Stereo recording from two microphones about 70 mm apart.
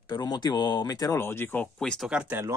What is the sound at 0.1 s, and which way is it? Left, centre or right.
Speech, left.